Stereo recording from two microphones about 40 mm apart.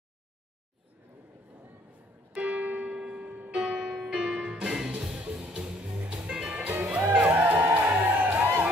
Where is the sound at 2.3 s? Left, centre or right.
Right.